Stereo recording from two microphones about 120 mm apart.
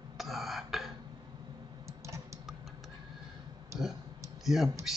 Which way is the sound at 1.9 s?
25° right (ahead or behind).